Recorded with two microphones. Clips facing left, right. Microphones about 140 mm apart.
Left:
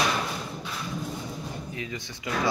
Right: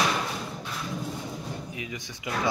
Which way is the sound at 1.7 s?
10° right (ahead or behind).